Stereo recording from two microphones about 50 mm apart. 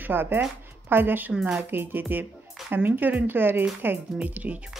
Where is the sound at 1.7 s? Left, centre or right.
Right.